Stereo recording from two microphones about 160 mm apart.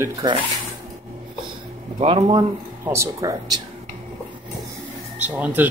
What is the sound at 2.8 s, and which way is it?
Speech, 15° right (ahead or behind).